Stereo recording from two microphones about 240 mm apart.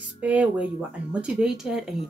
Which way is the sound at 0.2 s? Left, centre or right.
Centre.